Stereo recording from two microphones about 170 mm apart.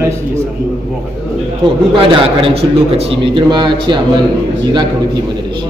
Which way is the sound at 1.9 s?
30° right (ahead or behind).